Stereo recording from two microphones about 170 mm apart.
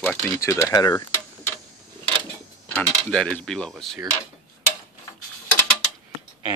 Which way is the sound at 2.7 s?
5° left (ahead or behind).